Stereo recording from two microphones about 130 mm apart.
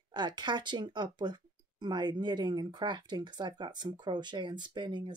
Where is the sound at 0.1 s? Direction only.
35° right (ahead or behind).